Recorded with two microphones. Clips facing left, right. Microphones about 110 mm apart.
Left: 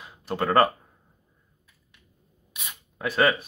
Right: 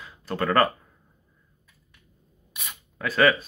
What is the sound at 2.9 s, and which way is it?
Speech, 25° left (ahead or behind).